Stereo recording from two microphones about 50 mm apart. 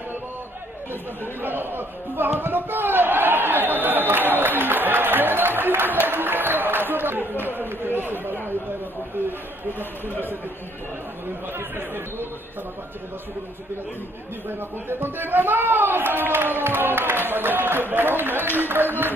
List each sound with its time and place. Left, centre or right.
1.4 s a man's voice: right
2.4 s a sound: right
11.5 s a man's voice: right
14.9 s a man's voice: right